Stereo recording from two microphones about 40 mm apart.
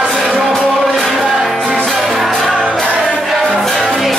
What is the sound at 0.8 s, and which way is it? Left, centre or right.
Music, centre.